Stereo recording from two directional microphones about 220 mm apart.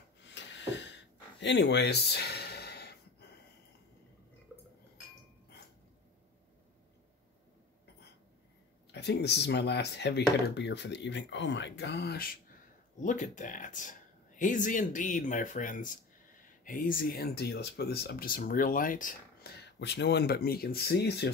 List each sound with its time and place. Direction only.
0.2 s snort: 55° left (ahead or behind)
1.4 s gasp: 50° left (ahead or behind)
8.9 s speech: 50° left (ahead or behind)
13.0 s speech: 35° left (ahead or behind)